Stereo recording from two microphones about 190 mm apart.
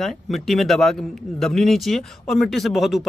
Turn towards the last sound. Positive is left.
turn(degrees=0)  # may be behind; listen again after turning